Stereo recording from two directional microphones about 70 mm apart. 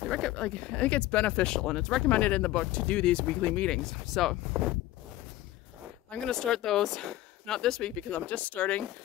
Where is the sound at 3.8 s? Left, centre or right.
Centre.